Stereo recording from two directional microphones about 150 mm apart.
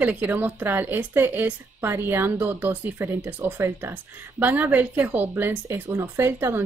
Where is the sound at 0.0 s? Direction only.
10° right (ahead or behind).